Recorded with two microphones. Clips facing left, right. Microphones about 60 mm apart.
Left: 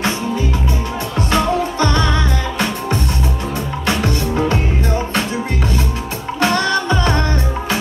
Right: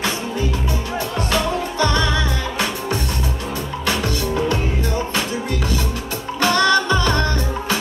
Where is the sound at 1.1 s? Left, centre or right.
Left.